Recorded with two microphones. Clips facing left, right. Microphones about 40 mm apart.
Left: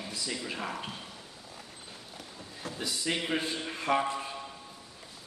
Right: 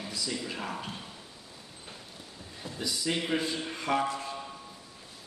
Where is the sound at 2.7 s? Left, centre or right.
Centre.